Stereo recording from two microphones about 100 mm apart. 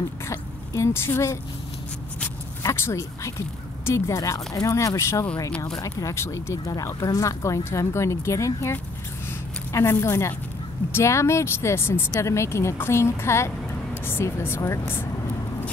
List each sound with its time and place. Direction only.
0.3 s speech: 30° left (ahead or behind)
2.7 s a woman's voice: 25° left (ahead or behind)